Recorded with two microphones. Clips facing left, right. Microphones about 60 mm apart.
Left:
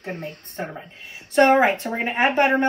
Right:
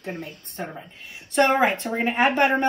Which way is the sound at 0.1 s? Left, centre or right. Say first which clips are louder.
Left 3 dB; left.